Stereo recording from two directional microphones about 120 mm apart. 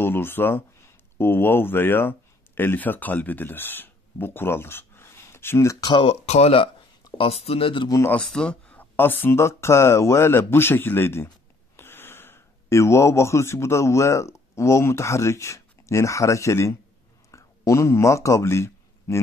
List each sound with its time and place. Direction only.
0.0 s speech: 20° left (ahead or behind)
6.0 s speech: 60° left (ahead or behind)
7.9 s speech: 20° left (ahead or behind)
8.2 s speech: 5° left (ahead or behind); by 16.7 s 25° left (ahead or behind)
17.3 s a sound: 25° left (ahead or behind)